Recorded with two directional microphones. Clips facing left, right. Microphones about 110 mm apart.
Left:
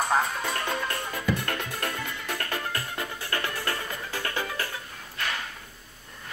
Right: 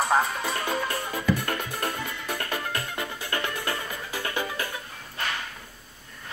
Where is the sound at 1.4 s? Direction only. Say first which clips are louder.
Right 2 dB; 15° right (ahead or behind).